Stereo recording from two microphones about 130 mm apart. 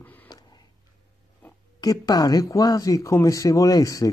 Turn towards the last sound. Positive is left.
turn(degrees=30)  # may be behind; listen again after turning